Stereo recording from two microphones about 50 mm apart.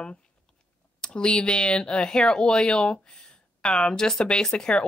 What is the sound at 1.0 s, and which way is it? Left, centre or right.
Speech, centre.